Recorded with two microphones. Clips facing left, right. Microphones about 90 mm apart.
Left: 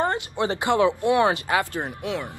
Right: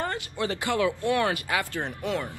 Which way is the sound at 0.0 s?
20° left (ahead or behind).